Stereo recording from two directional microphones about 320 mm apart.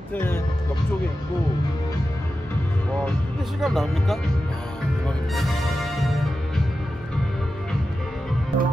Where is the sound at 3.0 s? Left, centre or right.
Centre.